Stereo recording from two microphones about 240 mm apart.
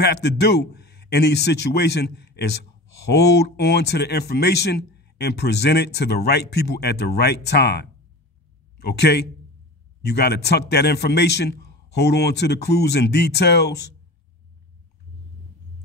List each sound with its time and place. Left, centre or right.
0.0 s a man's voice: left